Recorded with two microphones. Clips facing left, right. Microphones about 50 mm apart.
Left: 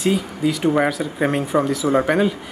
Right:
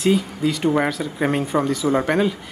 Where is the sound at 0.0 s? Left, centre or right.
Centre.